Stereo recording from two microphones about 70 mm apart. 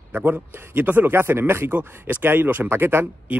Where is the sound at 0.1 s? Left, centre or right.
Right.